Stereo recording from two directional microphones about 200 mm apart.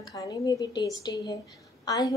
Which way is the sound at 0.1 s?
20° left (ahead or behind).